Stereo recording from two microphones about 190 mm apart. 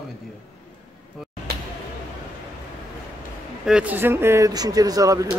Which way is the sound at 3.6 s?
5° right (ahead or behind).